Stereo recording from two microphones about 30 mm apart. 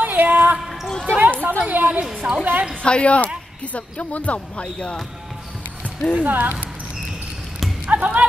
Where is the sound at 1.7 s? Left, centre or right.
Right.